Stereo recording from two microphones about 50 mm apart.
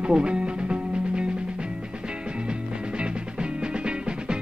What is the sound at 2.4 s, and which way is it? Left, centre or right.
Music, centre.